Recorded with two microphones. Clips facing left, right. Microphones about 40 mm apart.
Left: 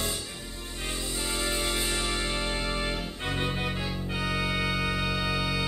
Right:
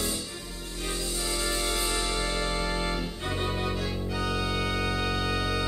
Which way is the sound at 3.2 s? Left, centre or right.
Left.